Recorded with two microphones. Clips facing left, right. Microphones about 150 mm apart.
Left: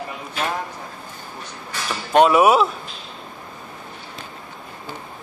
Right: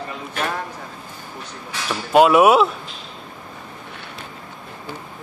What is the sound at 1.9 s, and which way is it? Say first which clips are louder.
Speech: right 1 dB; centre (ahead or behind).